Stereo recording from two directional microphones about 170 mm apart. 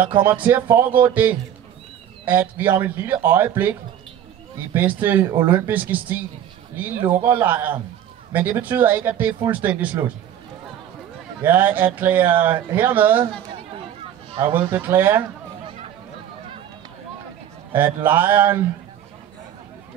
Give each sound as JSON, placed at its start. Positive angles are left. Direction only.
{"t": 0.2, "sound": "speech", "side_deg": -15}
{"t": 4.7, "sound": "speech", "side_deg": -10}
{"t": 7.2, "sound": "speech", "side_deg": -10}
{"t": 11.4, "sound": "speech", "side_deg": -10}
{"t": 14.3, "sound": "speech", "side_deg": -30}
{"t": 14.6, "sound": "speech", "side_deg": -10}
{"t": 17.7, "sound": "speech", "side_deg": -10}